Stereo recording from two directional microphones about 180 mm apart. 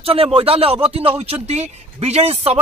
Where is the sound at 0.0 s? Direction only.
30° right (ahead or behind).